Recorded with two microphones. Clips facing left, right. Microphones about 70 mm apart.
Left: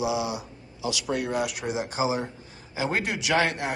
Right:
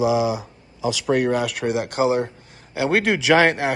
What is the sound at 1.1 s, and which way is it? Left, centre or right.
Speech, right.